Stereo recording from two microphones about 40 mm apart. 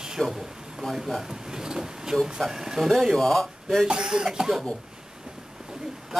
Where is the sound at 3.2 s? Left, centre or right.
Centre.